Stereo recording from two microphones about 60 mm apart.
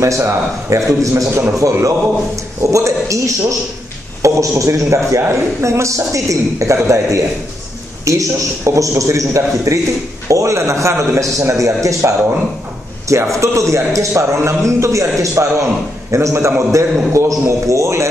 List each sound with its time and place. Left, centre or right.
0.0 s a man's voice: right
13.3 s a man's voice: right